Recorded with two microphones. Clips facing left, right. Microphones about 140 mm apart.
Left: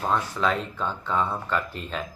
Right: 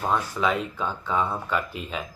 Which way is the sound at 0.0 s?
5° right (ahead or behind).